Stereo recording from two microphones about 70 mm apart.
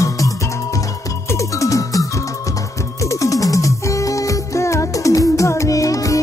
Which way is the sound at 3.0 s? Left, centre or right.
Left.